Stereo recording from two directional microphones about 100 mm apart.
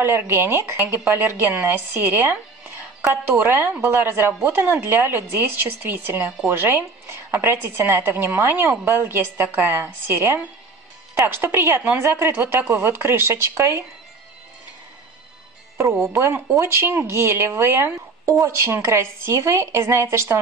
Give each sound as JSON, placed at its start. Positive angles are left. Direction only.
{"t": 0.0, "sound": "speech", "side_deg": -25}
{"t": 16.1, "sound": "speech", "side_deg": -25}